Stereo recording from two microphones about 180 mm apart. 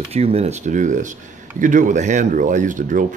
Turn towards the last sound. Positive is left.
turn(degrees=-45)  # may be behind; listen again after turning